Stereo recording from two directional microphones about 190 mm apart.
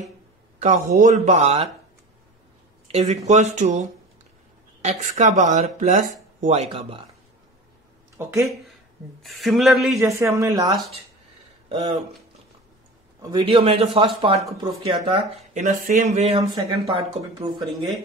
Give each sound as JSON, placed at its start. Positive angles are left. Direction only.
{"t": 0.6, "sound": "speech", "side_deg": -40}
{"t": 2.9, "sound": "speech", "side_deg": -35}
{"t": 8.2, "sound": "a man's voice", "side_deg": -15}
{"t": 9.2, "sound": "speech", "side_deg": 0}
{"t": 10.0, "sound": "a man's voice", "side_deg": -15}
{"t": 13.2, "sound": "a man's voice", "side_deg": -20}
{"t": 15.5, "sound": "speech", "side_deg": -40}